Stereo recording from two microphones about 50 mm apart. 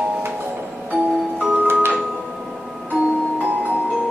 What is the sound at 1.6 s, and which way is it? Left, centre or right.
Music, right.